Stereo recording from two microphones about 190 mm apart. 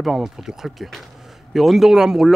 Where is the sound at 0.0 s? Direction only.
Centre (ahead or behind).